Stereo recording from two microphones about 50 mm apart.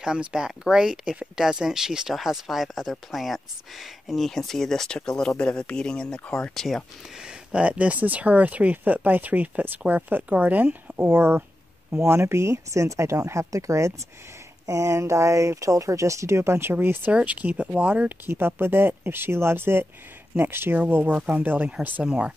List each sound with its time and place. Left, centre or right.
0.0 s speech: centre; by 5.8 s left
5.8 s speech: centre
6.5 s speech: centre
7.2 s speech: right
11.0 s speech: right
12.0 s speech: right
16.7 s speech: right
17.1 s speech: right
18.3 s speech: right
20.9 s speech: right
22.0 s speech: right